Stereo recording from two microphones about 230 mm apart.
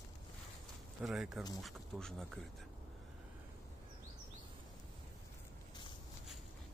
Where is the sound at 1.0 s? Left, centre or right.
Centre.